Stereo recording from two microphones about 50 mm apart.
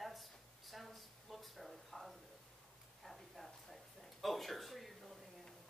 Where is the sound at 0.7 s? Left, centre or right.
Centre.